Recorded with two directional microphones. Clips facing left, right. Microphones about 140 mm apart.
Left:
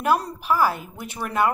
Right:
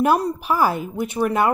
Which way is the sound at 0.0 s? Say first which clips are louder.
Right 4 dB; 15° right (ahead or behind).